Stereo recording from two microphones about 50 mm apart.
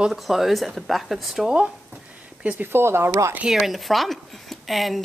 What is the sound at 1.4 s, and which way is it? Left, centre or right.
Speech, right.